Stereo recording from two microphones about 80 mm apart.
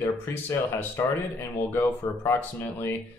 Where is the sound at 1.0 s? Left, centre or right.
Left.